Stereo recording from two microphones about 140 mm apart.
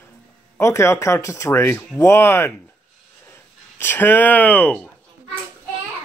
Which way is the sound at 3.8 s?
15° left (ahead or behind).